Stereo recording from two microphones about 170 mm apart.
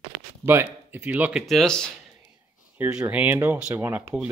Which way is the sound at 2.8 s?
10° right (ahead or behind).